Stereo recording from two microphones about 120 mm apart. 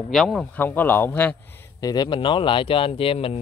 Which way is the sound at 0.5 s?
15° left (ahead or behind).